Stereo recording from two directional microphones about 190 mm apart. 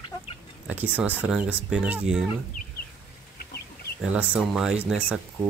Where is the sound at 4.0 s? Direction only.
5° right (ahead or behind).